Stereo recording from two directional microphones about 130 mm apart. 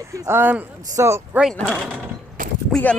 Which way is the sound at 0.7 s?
25° right (ahead or behind).